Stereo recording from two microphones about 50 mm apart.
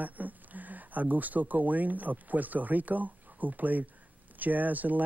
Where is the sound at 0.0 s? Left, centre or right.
Right.